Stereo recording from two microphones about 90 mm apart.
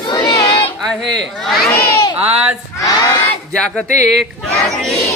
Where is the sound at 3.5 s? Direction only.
10° left (ahead or behind).